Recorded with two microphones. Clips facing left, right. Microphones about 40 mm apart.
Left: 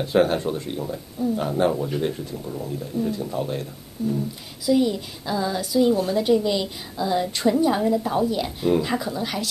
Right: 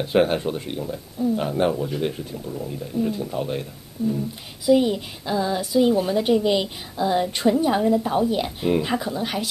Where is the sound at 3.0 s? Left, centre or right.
Centre.